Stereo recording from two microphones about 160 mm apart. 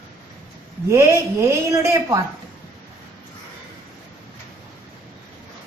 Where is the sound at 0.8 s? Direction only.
15° right (ahead or behind).